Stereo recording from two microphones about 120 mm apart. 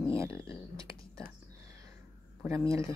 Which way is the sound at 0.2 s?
25° right (ahead or behind).